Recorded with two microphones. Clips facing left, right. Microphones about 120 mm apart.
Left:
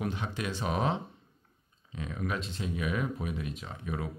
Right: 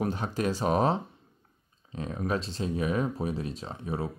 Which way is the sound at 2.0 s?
35° right (ahead or behind).